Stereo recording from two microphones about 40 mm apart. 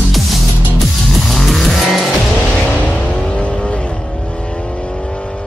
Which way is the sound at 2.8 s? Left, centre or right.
Left.